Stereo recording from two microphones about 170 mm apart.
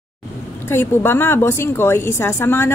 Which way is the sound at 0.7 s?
15° left (ahead or behind).